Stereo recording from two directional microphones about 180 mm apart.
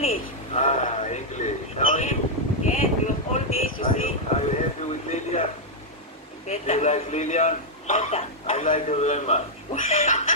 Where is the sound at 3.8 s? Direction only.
35° left (ahead or behind).